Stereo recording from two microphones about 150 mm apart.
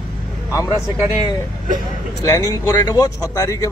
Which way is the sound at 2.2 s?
25° left (ahead or behind).